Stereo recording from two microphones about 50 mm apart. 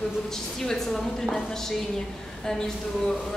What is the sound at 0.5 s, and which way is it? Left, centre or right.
A woman's voice, centre.